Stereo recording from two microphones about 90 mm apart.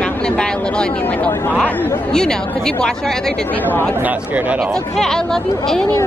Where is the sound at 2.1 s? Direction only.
5° left (ahead or behind).